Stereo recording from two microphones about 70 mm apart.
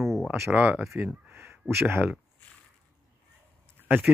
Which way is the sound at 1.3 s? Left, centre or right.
Right.